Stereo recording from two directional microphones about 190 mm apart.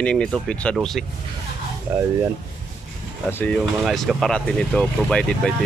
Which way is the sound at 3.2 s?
10° left (ahead or behind).